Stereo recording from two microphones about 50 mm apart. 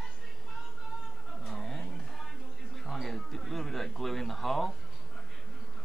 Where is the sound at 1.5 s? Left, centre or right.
Centre.